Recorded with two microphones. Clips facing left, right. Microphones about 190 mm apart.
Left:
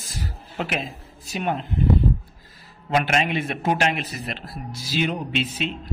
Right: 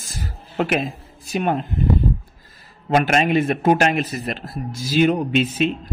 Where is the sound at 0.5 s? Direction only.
60° right (ahead or behind).